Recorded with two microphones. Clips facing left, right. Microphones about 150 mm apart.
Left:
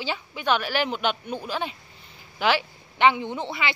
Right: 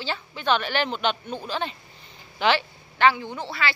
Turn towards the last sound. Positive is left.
turn(degrees=20)  # may be behind; listen again after turning